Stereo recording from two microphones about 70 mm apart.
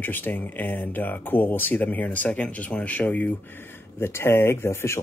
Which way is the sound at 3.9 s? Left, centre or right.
Left.